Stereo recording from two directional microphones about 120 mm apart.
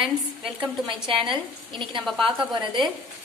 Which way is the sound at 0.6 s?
40° right (ahead or behind).